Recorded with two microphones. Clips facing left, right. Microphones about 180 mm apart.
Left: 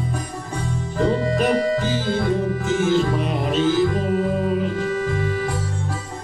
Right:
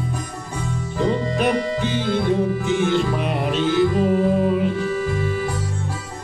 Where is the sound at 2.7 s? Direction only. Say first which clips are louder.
Left 3 dB; centre (ahead or behind).